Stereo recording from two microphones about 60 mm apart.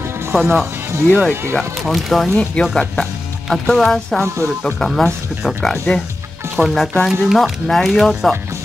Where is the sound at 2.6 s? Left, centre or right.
Centre.